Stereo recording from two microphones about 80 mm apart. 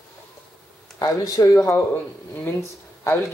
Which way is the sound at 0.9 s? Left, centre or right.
Left.